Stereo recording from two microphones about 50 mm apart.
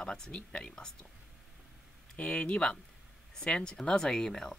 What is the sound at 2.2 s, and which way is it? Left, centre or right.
Speech, left.